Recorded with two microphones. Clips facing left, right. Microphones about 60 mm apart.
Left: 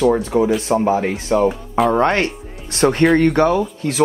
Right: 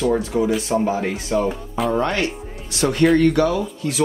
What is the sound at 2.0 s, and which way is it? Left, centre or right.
Speech, left.